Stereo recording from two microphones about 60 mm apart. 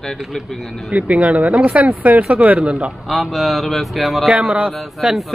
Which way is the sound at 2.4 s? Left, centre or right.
Centre.